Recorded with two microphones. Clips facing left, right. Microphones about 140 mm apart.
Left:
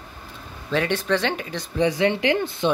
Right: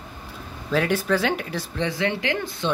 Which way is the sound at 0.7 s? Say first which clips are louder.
Even; 5° right (ahead or behind).